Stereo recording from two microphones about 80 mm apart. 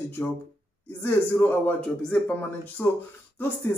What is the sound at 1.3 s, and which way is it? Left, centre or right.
Speech, left.